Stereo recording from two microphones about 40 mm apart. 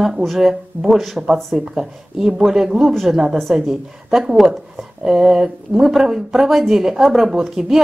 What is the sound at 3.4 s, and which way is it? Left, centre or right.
Speech, centre.